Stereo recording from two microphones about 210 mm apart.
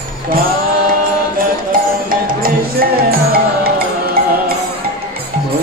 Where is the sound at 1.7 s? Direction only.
40° right (ahead or behind).